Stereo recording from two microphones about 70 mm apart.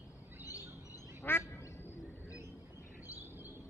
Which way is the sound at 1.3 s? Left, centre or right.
Left.